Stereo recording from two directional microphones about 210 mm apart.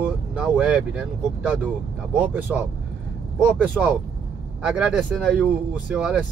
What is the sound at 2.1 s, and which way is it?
Speech, 5° right (ahead or behind).